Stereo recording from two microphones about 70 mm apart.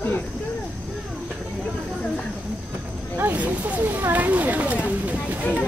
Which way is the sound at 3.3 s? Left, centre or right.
Right.